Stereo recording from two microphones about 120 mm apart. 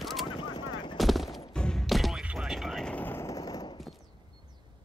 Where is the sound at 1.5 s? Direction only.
5° left (ahead or behind); by 3.7 s 30° left (ahead or behind).